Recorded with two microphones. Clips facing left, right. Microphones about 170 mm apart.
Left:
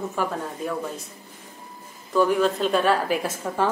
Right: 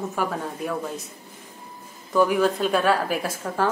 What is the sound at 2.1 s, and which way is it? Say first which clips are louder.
Speech: even; 10° right (ahead or behind).